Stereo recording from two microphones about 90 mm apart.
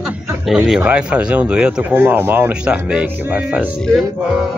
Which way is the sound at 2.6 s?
10° right (ahead or behind).